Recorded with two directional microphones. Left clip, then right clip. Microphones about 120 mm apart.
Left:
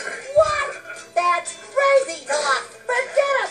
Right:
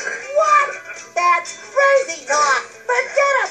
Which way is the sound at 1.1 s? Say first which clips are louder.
Right 3 dB; 25° left (ahead or behind).